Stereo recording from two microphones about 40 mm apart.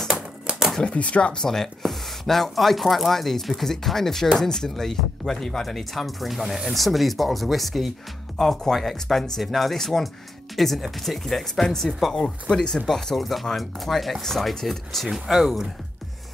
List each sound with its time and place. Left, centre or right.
0.8 s speech: left
1.8 s speech: centre
12.8 s speech: centre
15.2 s speech: centre